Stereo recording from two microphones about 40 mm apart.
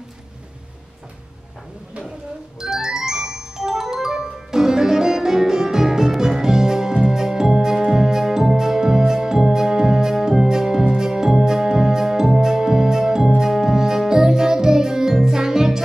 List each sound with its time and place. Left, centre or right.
2.6 s music: centre